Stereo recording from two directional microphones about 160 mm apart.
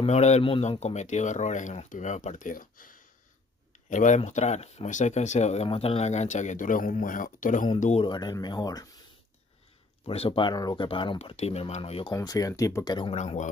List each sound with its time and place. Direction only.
0.0 s speech: 45° left (ahead or behind)
8.0 s speech: 25° left (ahead or behind)
10.0 s speech: 35° left (ahead or behind)
12.1 s speech: 20° left (ahead or behind)
13.1 s speech: 45° left (ahead or behind)